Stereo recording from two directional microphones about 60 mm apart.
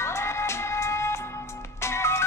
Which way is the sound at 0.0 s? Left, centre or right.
Left.